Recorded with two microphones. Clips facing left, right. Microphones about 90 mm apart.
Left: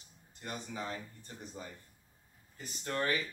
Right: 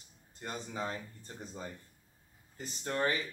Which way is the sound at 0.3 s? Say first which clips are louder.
Right 1 dB; 35° right (ahead or behind).